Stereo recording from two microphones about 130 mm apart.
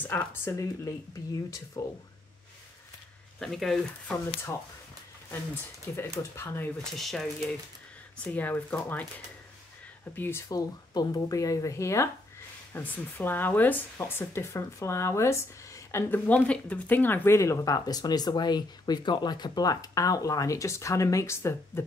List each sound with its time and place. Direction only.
0.0 s speech: 15° left (ahead or behind)
3.3 s speech: centre (ahead or behind)
5.3 s speech: 20° left (ahead or behind)
6.8 s speech: centre (ahead or behind)
8.2 s speech: 15° left (ahead or behind)
10.1 s speech: 15° left (ahead or behind)
10.5 s speech: 30° left (ahead or behind)